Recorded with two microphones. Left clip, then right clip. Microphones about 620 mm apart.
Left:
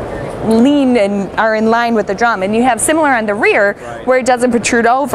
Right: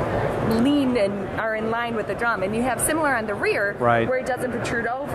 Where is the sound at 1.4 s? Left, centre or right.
Left.